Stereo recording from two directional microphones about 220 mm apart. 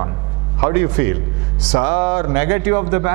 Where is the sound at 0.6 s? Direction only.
15° right (ahead or behind).